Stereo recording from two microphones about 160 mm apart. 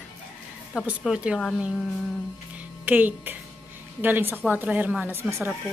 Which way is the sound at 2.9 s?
10° right (ahead or behind).